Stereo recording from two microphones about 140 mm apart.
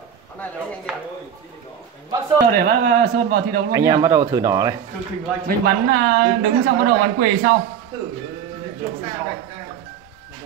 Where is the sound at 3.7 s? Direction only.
20° right (ahead or behind).